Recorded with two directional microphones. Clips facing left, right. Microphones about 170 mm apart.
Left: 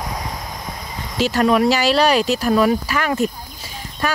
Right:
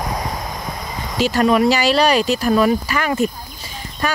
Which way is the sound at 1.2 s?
Centre (ahead or behind).